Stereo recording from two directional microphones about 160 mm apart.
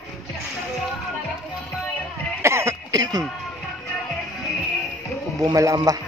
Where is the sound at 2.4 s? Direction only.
15° right (ahead or behind).